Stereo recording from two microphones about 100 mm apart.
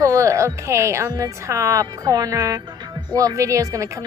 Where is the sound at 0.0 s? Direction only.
30° right (ahead or behind).